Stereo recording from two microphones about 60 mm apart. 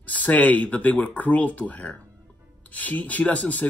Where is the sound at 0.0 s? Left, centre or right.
Left.